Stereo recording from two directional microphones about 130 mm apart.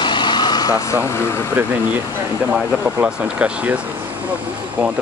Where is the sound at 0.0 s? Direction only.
35° left (ahead or behind).